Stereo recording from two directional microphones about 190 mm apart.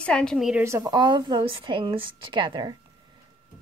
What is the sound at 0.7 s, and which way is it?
A woman's voice, 15° right (ahead or behind).